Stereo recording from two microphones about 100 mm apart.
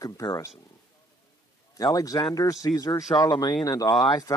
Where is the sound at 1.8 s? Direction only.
35° left (ahead or behind).